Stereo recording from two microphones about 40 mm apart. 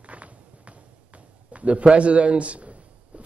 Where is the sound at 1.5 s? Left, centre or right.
Right.